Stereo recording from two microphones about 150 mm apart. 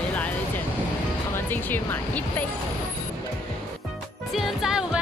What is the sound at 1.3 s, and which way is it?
Music, 15° left (ahead or behind).